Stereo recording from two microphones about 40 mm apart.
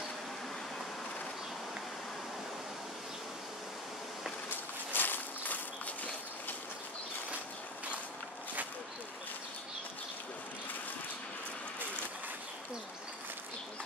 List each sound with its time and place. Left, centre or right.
4.9 s walk: left